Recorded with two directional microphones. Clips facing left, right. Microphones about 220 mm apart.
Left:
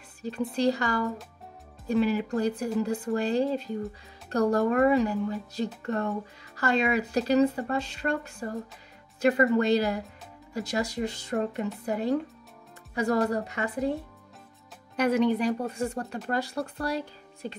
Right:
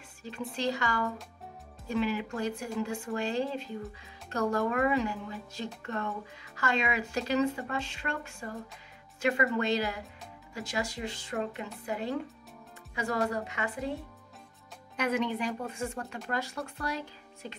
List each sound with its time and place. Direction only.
0.2 s speech: 40° left (ahead or behind)
15.0 s speech: 35° left (ahead or behind)